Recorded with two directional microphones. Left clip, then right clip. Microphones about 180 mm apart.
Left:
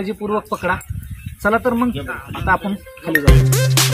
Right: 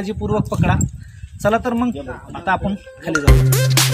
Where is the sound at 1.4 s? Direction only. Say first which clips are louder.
Left 1 dB; 25° right (ahead or behind).